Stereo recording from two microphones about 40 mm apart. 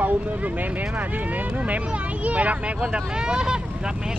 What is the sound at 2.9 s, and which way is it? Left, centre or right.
Speech, right.